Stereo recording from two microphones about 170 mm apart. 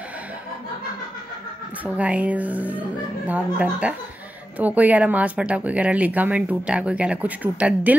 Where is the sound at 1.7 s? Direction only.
10° right (ahead or behind).